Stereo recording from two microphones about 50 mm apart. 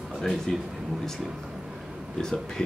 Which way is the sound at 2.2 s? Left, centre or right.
Centre.